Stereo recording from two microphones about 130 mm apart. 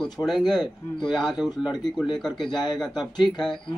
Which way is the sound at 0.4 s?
35° left (ahead or behind).